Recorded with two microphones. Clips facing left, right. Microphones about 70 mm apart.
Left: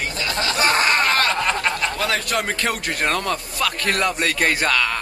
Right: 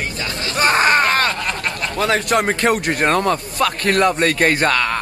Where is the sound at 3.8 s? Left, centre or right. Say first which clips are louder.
Right 6 dB; centre.